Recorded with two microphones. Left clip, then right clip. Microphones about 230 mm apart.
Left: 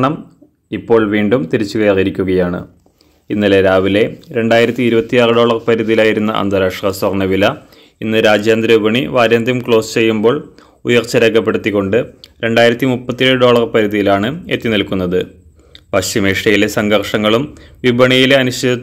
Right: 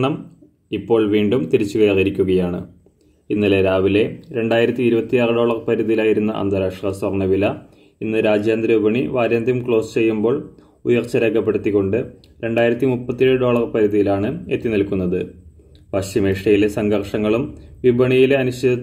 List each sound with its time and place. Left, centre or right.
1.1 s speech: left
1.5 s speech: left
1.8 s speech: left